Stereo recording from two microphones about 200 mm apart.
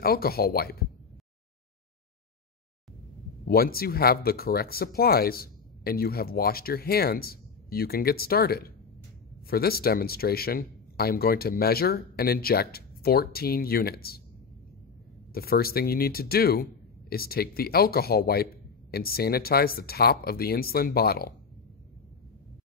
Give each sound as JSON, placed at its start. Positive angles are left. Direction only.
{"t": 0.0, "sound": "speech", "side_deg": 50}
{"t": 3.4, "sound": "speech", "side_deg": 50}
{"t": 15.3, "sound": "speech", "side_deg": 50}